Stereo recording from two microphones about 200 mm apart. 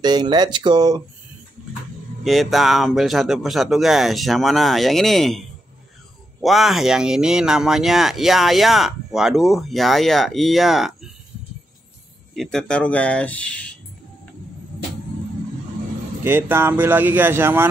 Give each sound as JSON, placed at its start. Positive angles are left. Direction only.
{"t": 0.0, "sound": "speech", "side_deg": -20}
{"t": 2.2, "sound": "speech", "side_deg": 0}
{"t": 6.4, "sound": "speech", "side_deg": 0}
{"t": 12.4, "sound": "speech", "side_deg": 0}
{"t": 16.3, "sound": "speech", "side_deg": -10}